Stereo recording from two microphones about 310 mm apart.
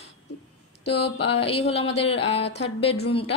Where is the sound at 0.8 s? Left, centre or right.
Centre.